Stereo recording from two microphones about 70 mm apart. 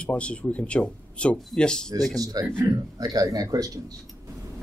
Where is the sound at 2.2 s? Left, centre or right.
Right.